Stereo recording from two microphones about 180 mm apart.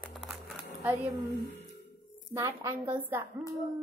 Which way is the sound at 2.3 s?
15° right (ahead or behind).